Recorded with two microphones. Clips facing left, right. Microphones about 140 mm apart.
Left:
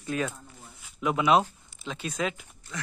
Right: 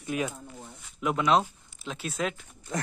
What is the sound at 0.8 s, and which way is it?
Speech, centre (ahead or behind).